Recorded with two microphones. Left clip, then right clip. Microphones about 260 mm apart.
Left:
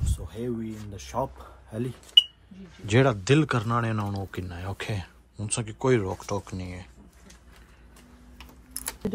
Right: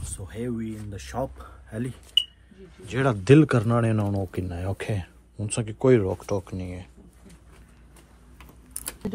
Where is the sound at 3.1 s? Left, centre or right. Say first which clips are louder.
Right 5 dB; centre.